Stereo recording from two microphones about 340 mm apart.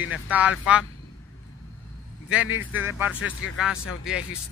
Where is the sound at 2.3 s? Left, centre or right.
Centre.